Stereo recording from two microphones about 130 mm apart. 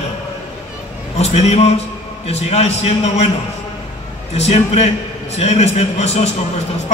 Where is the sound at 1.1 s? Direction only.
55° left (ahead or behind).